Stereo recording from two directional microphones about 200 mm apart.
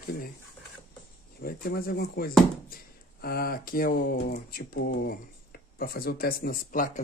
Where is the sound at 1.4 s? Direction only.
50° left (ahead or behind).